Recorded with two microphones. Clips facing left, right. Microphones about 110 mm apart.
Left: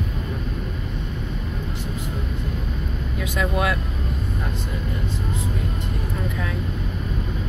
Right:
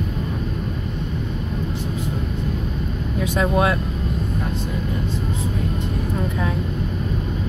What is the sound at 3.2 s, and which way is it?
Speech, 30° right (ahead or behind).